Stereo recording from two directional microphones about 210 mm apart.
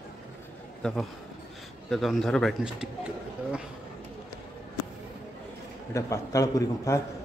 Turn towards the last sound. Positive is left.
turn(degrees=15)  # may be behind; listen again after turning